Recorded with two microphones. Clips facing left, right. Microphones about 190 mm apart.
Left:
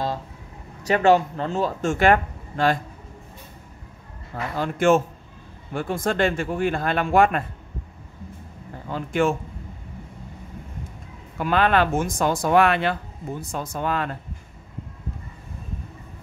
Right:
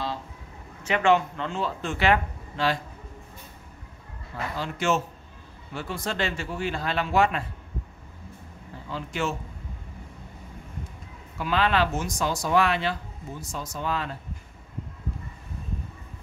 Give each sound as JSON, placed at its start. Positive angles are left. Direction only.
{"t": 0.8, "sound": "speech", "side_deg": 40}
{"t": 4.6, "sound": "speech", "side_deg": 50}
{"t": 8.8, "sound": "speech", "side_deg": 50}
{"t": 11.3, "sound": "speech", "side_deg": 50}